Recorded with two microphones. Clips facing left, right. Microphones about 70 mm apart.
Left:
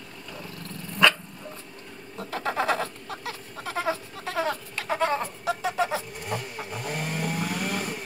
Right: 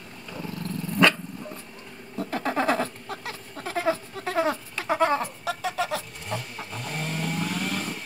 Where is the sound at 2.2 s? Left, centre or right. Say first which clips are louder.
Right 2 dB; right.